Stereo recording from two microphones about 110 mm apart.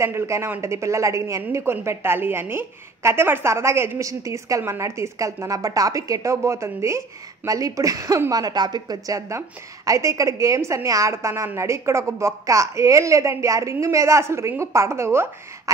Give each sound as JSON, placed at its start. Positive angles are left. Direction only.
{"t": 0.0, "sound": "a woman's voice", "side_deg": -25}